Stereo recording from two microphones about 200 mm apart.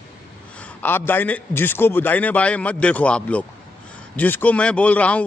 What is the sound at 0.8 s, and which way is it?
A man's voice, 10° left (ahead or behind).